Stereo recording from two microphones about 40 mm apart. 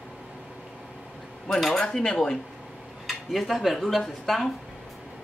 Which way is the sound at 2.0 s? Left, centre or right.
Centre.